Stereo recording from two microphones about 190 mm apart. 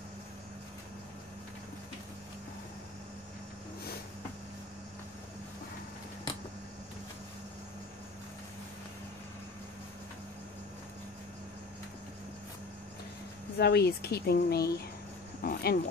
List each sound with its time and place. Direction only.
13.6 s speech: 60° left (ahead or behind)